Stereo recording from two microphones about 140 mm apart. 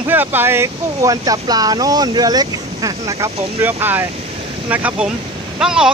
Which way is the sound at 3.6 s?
15° right (ahead or behind).